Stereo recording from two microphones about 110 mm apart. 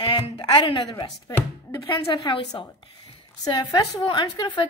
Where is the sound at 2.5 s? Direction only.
50° left (ahead or behind).